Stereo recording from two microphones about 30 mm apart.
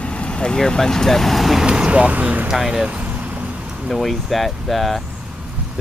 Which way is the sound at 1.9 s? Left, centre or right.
Right.